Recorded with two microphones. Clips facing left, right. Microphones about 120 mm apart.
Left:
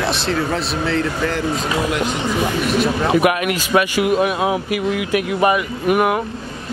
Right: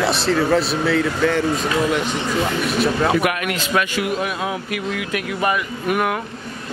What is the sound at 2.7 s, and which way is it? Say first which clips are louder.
Speech: even; centre (ahead or behind).